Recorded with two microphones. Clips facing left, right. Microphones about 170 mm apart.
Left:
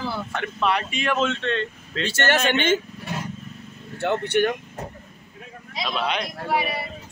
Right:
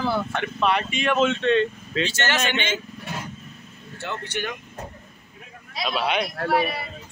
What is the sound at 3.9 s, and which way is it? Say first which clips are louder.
Speech: left 10 dB; 60° left (ahead or behind).